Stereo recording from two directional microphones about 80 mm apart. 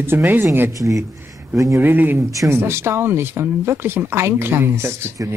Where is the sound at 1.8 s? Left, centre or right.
Right.